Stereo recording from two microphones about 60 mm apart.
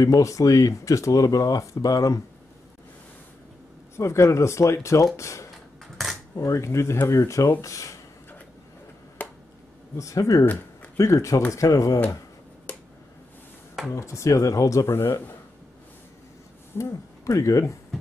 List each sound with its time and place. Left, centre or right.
0.0 s speech: left
3.9 s speech: left
9.2 s finger snapping: left
9.9 s speech: left
10.4 s a sound: left
11.0 s speech: left
13.9 s speech: left
14.9 s speech: left
16.7 s speech: left
17.3 s speech: left